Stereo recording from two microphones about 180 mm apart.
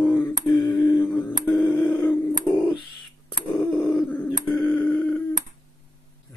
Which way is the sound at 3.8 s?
10° left (ahead or behind).